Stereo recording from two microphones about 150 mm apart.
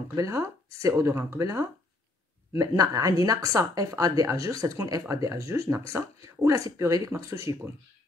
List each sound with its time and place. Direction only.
0.1 s speech: 20° right (ahead or behind)